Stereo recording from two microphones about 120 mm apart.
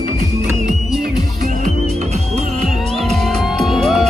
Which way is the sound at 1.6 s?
70° right (ahead or behind).